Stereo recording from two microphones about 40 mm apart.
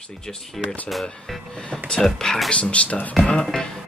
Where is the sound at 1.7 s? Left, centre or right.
Centre.